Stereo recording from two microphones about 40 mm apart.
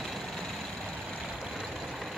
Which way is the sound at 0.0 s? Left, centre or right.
Centre.